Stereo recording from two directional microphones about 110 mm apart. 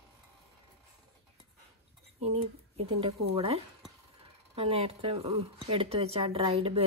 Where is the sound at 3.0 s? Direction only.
60° right (ahead or behind).